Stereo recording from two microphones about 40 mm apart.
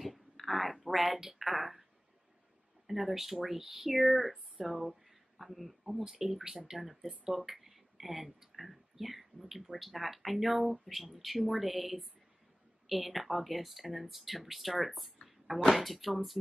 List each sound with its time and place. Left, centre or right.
0.0 s a sound: centre
2.9 s speech: centre
6.0 s speech: centre
6.8 s speech: centre
15.2 s a sound: centre
15.7 s speech: centre